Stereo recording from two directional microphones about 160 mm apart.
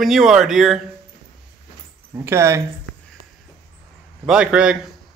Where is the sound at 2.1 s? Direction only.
15° right (ahead or behind).